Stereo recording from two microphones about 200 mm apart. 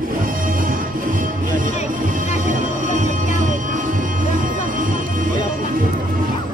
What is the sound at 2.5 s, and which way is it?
Music, 40° right (ahead or behind).